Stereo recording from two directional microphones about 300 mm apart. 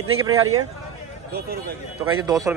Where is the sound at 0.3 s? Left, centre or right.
Right.